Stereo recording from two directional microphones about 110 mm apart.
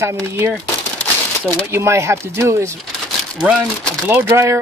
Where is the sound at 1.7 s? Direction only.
25° right (ahead or behind).